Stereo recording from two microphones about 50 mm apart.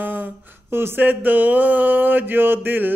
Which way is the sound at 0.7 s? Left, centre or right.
Right.